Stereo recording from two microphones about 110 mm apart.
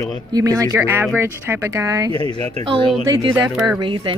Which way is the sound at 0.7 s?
20° right (ahead or behind).